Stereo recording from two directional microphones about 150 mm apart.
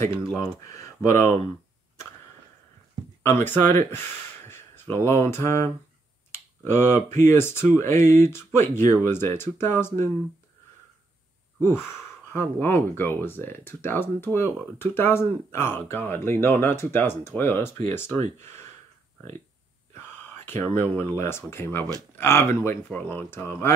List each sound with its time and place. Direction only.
0.4 s speech: 20° left (ahead or behind)
3.2 s speech: 15° left (ahead or behind)
6.3 s a sound: 15° left (ahead or behind)
7.2 s speech: 15° left (ahead or behind)
11.6 s speech: 15° left (ahead or behind)
18.1 s speech: 45° right (ahead or behind)
20.1 s speech: 15° left (ahead or behind)